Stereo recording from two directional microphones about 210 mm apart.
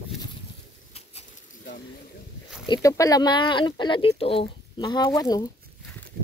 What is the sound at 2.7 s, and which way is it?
Speech, 15° left (ahead or behind).